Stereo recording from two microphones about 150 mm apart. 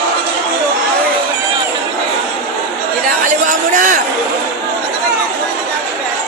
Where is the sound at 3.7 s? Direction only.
60° right (ahead or behind).